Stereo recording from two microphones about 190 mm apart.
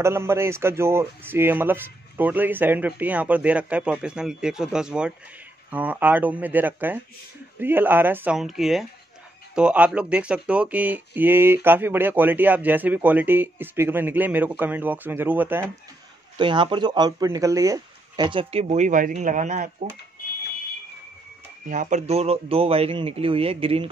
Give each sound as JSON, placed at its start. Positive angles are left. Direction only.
{"t": 0.0, "sound": "a man's voice", "side_deg": -15}
{"t": 16.3, "sound": "speech", "side_deg": -25}
{"t": 21.6, "sound": "speech", "side_deg": -40}